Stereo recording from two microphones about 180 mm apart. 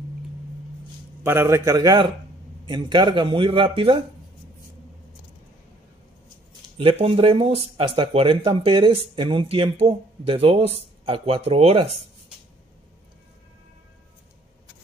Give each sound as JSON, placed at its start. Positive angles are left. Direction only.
{"t": 1.2, "sound": "a man's voice", "side_deg": -15}
{"t": 6.8, "sound": "speech", "side_deg": -30}